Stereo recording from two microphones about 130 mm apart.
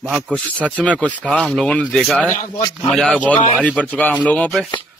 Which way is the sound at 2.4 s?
30° left (ahead or behind).